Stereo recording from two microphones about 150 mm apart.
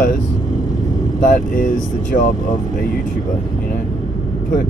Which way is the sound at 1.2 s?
65° left (ahead or behind).